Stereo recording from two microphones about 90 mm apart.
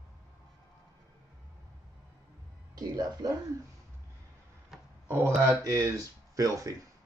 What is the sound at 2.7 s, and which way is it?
Speech, 45° right (ahead or behind).